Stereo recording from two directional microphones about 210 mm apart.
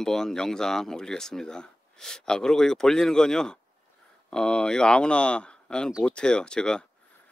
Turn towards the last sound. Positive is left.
turn(degrees=5)  # may be behind; listen again after turning